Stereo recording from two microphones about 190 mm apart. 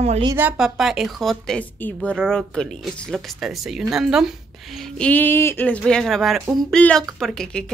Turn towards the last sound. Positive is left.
turn(degrees=5)  # may be behind; listen again after turning